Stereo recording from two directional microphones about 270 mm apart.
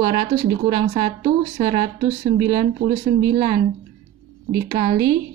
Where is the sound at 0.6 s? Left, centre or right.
Right.